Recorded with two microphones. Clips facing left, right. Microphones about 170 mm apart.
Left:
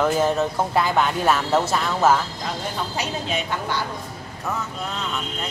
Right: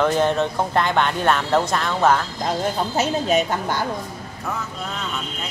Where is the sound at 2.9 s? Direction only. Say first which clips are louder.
Right 10 dB; 45° right (ahead or behind).